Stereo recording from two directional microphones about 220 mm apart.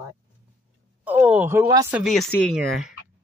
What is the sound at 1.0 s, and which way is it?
Speech, 5° right (ahead or behind).